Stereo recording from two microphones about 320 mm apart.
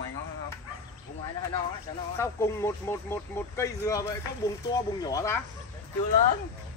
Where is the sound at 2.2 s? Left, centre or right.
Centre.